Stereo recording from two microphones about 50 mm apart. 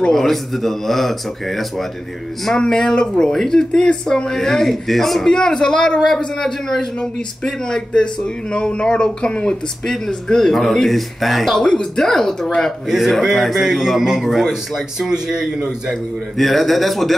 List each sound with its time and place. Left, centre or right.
0.1 s speech: centre
2.4 s speech: centre
5.3 s speech: centre
11.6 s speech: centre
12.9 s speech: centre
15.9 s speech: centre